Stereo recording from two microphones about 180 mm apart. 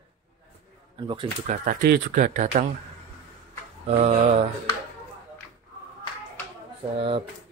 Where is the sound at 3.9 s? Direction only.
40° right (ahead or behind).